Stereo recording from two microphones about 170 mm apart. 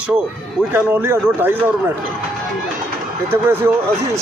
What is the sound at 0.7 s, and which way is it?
Speech, 10° right (ahead or behind).